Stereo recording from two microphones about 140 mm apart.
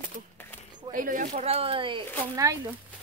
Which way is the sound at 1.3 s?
45° right (ahead or behind).